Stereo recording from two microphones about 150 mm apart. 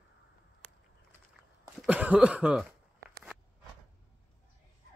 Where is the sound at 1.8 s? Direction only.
10° right (ahead or behind).